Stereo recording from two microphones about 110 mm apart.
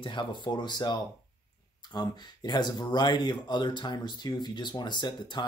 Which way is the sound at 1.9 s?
40° left (ahead or behind).